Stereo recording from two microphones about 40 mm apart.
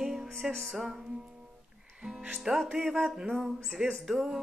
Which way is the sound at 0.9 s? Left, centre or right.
Centre.